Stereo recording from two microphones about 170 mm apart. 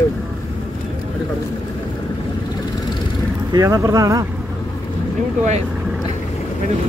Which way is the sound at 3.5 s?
15° right (ahead or behind).